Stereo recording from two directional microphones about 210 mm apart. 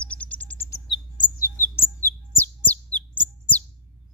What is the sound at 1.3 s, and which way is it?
Chirp, 15° left (ahead or behind).